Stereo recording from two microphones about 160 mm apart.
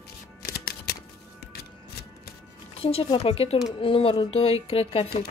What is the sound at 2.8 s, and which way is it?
Speech, 35° left (ahead or behind).